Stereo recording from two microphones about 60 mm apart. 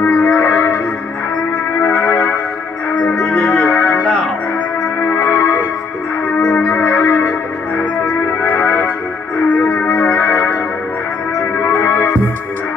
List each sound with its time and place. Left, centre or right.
0.1 s music: left
1.8 s music: left
2.9 s music: left
3.5 s music: left
5.0 s music: left
6.6 s music: left
8.0 s music: left